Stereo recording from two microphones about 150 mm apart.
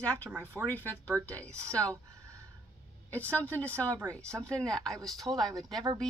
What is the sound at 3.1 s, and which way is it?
A woman's voice, 10° left (ahead or behind).